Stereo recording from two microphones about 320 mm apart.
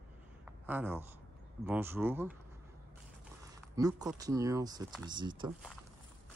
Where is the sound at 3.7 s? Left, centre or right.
Centre.